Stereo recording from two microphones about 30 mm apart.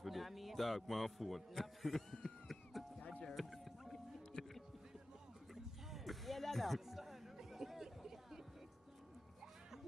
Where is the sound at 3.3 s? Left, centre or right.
Centre.